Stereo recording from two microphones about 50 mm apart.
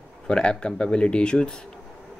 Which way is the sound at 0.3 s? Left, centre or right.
Centre.